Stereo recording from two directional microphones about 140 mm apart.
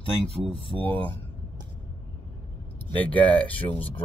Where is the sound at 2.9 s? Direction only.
10° left (ahead or behind).